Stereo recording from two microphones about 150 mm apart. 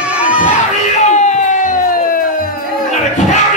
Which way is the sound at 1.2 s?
55° left (ahead or behind).